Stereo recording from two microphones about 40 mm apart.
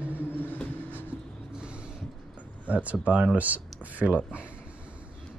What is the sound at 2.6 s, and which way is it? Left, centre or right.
Speech, right.